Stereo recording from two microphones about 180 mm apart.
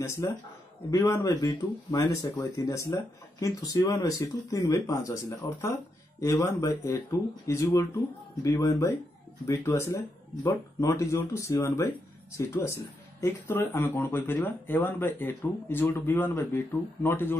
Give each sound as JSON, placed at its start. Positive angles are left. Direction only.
{"t": 0.0, "sound": "speech", "side_deg": 15}